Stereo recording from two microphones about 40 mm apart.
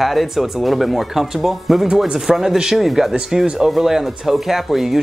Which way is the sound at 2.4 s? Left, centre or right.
Centre.